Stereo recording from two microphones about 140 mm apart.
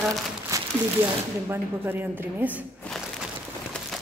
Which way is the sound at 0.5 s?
20° right (ahead or behind).